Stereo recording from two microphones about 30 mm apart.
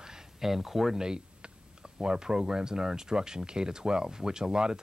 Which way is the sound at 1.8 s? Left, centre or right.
Right.